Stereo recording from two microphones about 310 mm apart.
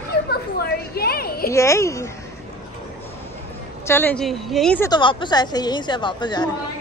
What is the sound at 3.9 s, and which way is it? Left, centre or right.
Speech, centre.